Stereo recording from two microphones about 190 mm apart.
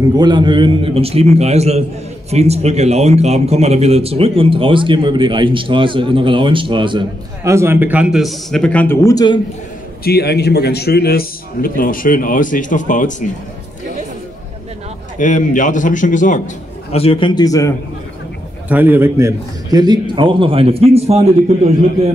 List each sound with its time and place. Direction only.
0.2 s a man's voice: 25° right (ahead or behind); by 9.4 s 20° left (ahead or behind)
10.0 s a man's voice: 60° left (ahead or behind); by 13.1 s 40° left (ahead or behind)
15.1 s a man's voice: 40° left (ahead or behind)
16.9 s a man's voice: 30° left (ahead or behind)
18.7 s a man's voice: 10° right (ahead or behind); by 21.3 s 35° right (ahead or behind)